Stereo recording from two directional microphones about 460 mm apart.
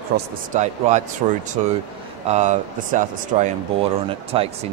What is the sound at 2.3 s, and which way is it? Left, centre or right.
Speech, centre.